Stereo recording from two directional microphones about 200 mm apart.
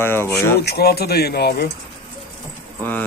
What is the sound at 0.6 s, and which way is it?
Speech, 50° left (ahead or behind).